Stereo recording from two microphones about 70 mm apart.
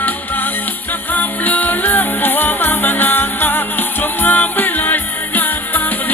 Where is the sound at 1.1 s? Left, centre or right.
Left.